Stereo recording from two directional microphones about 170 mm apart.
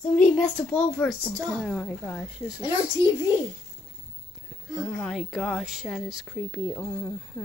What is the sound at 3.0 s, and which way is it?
Speech, 20° right (ahead or behind).